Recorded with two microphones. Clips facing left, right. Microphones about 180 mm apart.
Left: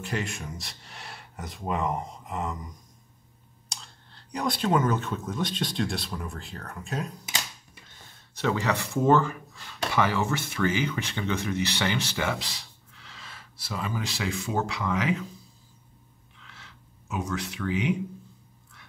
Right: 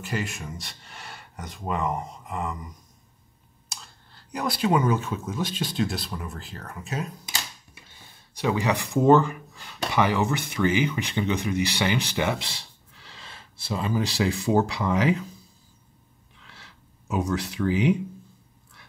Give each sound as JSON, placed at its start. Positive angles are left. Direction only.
{"t": 0.0, "sound": "speech", "side_deg": 0}
{"t": 3.6, "sound": "speech", "side_deg": -5}
{"t": 7.9, "sound": "speech", "side_deg": -15}
{"t": 16.4, "sound": "a sound", "side_deg": -35}